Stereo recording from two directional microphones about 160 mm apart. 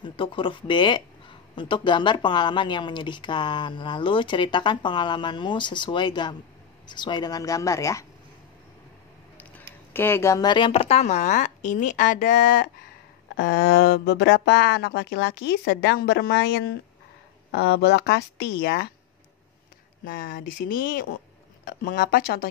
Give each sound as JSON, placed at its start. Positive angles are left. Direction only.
{"t": 0.0, "sound": "speech", "side_deg": 30}
{"t": 9.9, "sound": "a woman's voice", "side_deg": 15}
{"t": 13.5, "sound": "speech", "side_deg": 90}
{"t": 20.1, "sound": "speech", "side_deg": 60}